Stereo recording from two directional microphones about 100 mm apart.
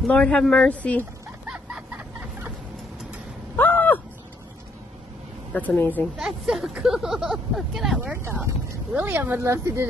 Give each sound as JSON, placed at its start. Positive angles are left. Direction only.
{"t": 0.0, "sound": "speech", "side_deg": 10}
{"t": 1.5, "sound": "a sound", "side_deg": -10}
{"t": 3.5, "sound": "a sound", "side_deg": 20}
{"t": 5.5, "sound": "speech", "side_deg": 15}
{"t": 6.1, "sound": "speech", "side_deg": -5}
{"t": 8.0, "sound": "speech", "side_deg": -25}